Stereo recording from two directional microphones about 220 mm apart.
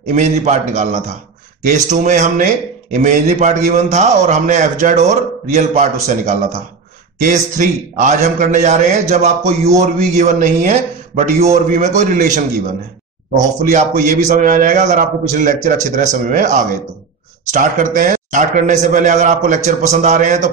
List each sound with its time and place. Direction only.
0.1 s a man's voice: 30° right (ahead or behind)
13.4 s a man's voice: 35° right (ahead or behind)